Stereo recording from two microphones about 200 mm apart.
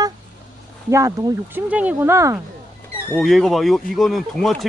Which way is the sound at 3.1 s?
Centre (ahead or behind).